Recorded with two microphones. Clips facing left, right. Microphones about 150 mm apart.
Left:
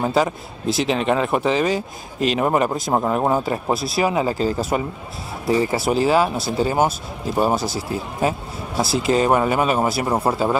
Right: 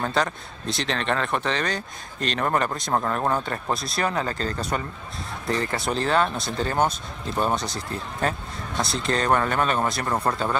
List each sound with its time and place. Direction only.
0.0 s speech: 5° left (ahead or behind)
2.9 s speech: 15° left (ahead or behind)